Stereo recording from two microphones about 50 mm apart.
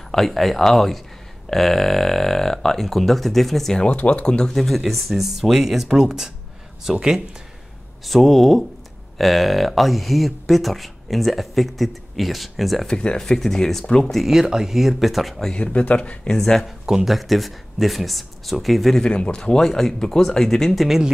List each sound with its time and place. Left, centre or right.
0.1 s speech: centre
3.8 s speech: left
4.6 s speech: centre
8.0 s speech: centre
12.8 s speech: centre
14.1 s speech: centre
15.5 s speech: left
16.3 s speech: centre
16.8 s speech: centre
18.9 s speech: centre
19.6 s speech: centre